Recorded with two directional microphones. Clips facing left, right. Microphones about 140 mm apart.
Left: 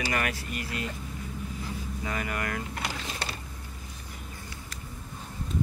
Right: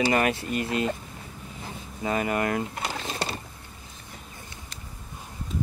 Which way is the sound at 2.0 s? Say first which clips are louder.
Right 8 dB; 25° right (ahead or behind).